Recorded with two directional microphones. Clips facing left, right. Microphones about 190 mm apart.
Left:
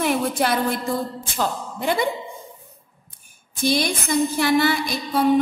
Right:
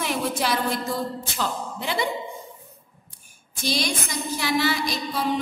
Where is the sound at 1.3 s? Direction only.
50° left (ahead or behind).